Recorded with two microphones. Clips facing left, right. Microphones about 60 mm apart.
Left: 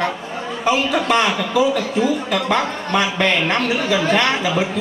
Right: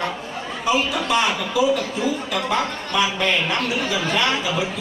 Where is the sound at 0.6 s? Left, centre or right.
Left.